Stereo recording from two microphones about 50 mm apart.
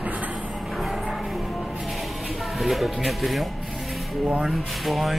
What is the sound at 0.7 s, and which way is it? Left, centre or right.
Music, centre.